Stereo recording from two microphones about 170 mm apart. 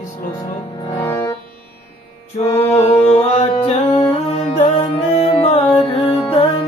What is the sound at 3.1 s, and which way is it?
Music, 35° left (ahead or behind).